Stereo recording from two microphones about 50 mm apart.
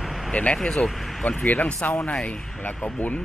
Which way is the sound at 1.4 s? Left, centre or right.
Left.